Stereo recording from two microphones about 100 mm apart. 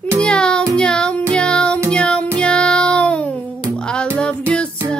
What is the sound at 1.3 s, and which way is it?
Music, 10° left (ahead or behind).